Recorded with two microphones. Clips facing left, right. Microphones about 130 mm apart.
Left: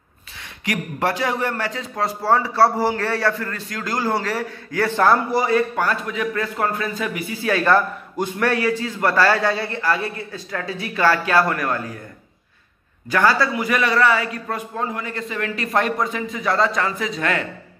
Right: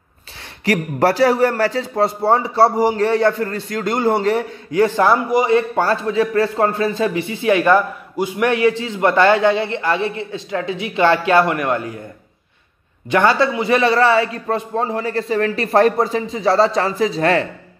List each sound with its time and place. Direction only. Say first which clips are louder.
0.7 s a man's voice: right 7 dB; 35° right (ahead or behind); by 5.6 s 15° right (ahead or behind)
5.8 s a man's voice: right 6 dB; 30° right (ahead or behind)
13.1 s a man's voice: right 3 dB; 25° right (ahead or behind)